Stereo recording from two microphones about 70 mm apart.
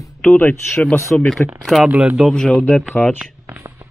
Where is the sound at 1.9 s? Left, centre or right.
Right.